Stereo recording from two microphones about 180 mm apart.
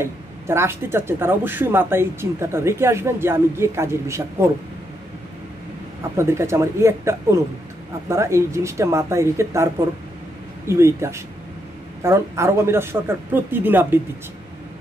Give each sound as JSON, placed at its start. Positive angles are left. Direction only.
{"t": 0.0, "sound": "speech", "side_deg": -15}
{"t": 6.1, "sound": "speech", "side_deg": -15}
{"t": 10.7, "sound": "speech", "side_deg": -15}